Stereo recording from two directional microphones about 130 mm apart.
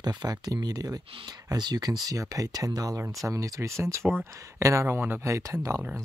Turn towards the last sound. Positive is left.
turn(degrees=-25)  # may be behind; listen again after turning